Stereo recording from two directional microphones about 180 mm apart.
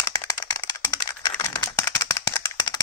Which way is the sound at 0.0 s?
20° left (ahead or behind).